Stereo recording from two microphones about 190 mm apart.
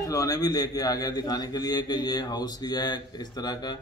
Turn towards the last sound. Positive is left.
turn(degrees=20)  # may be behind; listen again after turning